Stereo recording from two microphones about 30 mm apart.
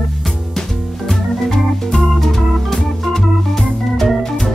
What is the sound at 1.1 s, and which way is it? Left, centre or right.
Organ, centre.